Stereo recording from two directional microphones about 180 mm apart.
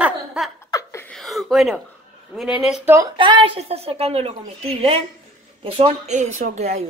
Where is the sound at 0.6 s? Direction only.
15° left (ahead or behind).